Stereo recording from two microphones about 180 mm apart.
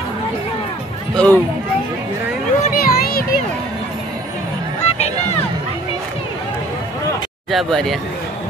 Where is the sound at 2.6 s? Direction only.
50° left (ahead or behind).